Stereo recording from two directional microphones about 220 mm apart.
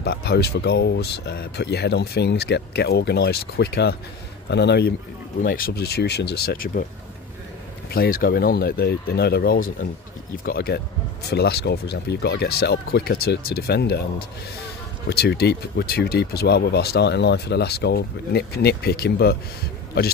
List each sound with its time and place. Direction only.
0.0 s speech: 50° left (ahead or behind)
7.9 s speech: 45° left (ahead or behind)
15.0 s speech: 45° left (ahead or behind)